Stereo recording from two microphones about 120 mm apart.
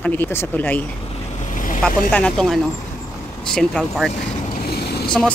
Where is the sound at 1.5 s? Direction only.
90° left.